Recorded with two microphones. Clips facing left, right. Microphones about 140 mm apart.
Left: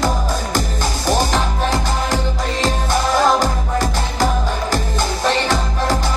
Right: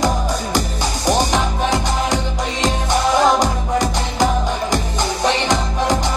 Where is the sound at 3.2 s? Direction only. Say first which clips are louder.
Right 1 dB; 15° right (ahead or behind).